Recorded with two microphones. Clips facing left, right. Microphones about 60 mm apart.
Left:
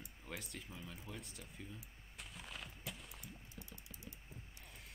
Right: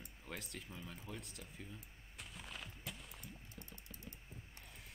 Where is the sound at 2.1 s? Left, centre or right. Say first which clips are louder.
Even; centre.